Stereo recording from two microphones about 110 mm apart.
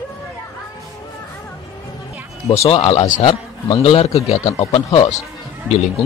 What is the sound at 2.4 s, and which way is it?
A man's voice, 65° left (ahead or behind).